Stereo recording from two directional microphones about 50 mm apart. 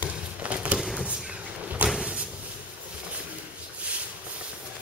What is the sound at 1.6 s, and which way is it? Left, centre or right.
Vehicle, right.